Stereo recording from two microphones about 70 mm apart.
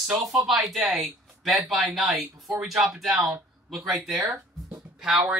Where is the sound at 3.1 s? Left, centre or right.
Right.